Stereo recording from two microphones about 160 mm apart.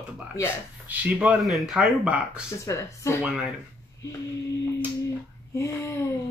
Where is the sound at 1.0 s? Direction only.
10° right (ahead or behind).